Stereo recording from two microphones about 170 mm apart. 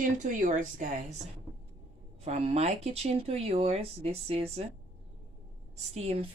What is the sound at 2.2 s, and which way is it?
Speech, 35° right (ahead or behind).